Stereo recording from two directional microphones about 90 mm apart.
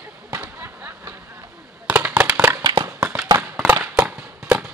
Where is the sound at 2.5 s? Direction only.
45° right (ahead or behind).